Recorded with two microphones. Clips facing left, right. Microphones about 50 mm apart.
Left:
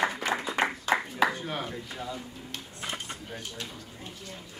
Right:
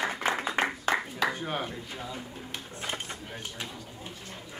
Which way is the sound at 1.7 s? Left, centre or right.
Centre.